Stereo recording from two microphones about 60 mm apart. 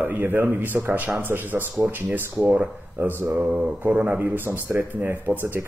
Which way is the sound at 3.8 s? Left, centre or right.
Right.